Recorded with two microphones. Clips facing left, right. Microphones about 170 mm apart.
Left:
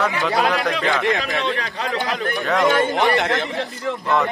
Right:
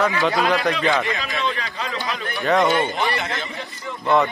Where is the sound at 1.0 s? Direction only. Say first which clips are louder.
Left 6 dB; 70° left (ahead or behind).